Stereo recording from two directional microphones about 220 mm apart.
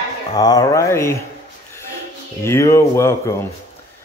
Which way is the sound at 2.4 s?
10° left (ahead or behind).